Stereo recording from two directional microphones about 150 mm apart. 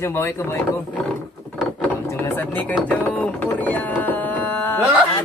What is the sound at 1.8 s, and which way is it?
Vehicle, 15° left (ahead or behind).